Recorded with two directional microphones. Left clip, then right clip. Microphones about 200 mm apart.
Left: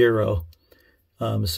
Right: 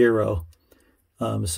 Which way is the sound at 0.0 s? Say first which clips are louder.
Even; 5° right (ahead or behind).